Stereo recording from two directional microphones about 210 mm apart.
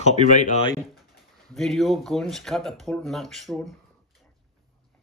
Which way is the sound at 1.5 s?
Centre (ahead or behind).